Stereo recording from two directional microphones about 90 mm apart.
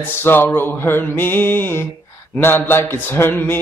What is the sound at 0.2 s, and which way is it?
Music, 25° left (ahead or behind).